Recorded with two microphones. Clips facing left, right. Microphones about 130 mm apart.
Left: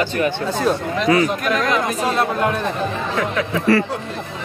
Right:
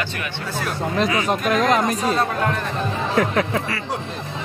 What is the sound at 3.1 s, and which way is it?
Speech, 40° right (ahead or behind).